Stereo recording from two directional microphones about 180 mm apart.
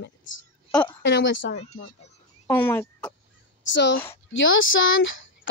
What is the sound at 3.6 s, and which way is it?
Speech, 85° left.